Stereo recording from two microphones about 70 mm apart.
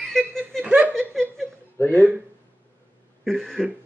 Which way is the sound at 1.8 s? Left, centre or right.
Left.